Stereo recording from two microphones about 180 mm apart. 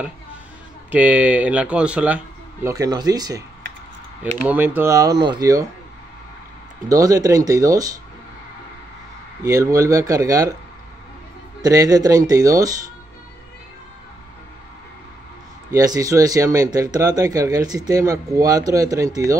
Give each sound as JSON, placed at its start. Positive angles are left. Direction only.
{"t": 0.9, "sound": "speech", "side_deg": -10}
{"t": 4.5, "sound": "speech", "side_deg": -10}
{"t": 6.9, "sound": "speech", "side_deg": -20}
{"t": 9.4, "sound": "speech", "side_deg": -20}
{"t": 11.6, "sound": "speech", "side_deg": -20}
{"t": 15.7, "sound": "speech", "side_deg": -20}